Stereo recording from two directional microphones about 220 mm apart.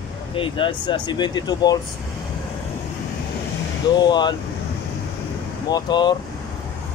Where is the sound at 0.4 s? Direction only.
20° left (ahead or behind).